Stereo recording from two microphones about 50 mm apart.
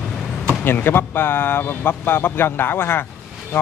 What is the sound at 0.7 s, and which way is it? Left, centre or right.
A man's voice, left.